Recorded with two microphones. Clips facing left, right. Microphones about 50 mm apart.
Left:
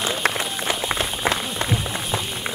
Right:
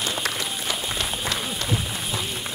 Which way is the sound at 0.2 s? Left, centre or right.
Left.